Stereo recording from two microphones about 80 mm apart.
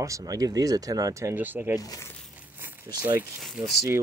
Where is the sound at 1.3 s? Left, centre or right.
Right.